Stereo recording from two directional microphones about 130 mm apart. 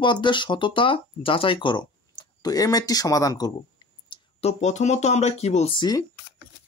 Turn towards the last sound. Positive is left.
turn(degrees=30)  # may be behind; listen again after turning